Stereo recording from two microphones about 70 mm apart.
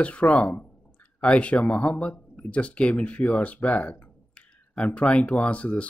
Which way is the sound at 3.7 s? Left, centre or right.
Left.